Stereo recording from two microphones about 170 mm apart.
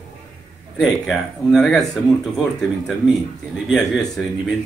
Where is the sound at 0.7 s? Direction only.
Centre (ahead or behind).